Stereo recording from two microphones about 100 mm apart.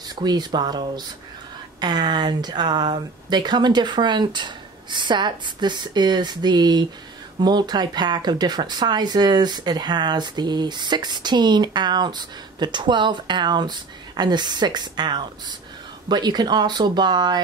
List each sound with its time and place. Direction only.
0.1 s speech: 45° right (ahead or behind)